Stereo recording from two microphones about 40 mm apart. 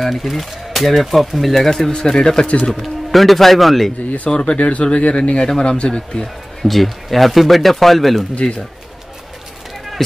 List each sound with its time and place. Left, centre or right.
0.0 s speech: centre
1.9 s speech: centre
2.4 s speech: left
2.7 s speech: centre
4.3 s speech: left
6.2 s speech: centre